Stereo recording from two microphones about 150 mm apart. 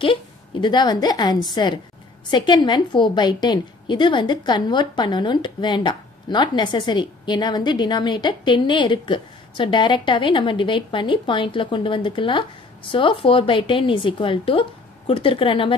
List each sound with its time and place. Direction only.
0.0 s a woman's voice: 35° left (ahead or behind)